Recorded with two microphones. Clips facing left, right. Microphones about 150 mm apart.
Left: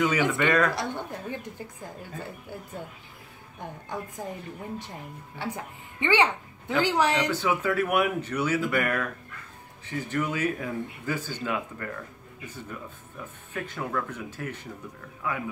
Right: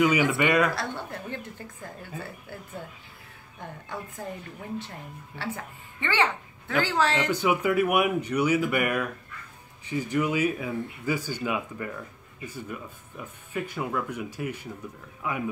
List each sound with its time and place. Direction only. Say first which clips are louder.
0.0 s speech: right 2 dB; 10° right (ahead or behind)
0.7 s speech: left 1 dB; 15° left (ahead or behind)
3.6 s speech: left 2 dB; 15° left (ahead or behind)
7.2 s speech: right 2 dB; 15° right (ahead or behind)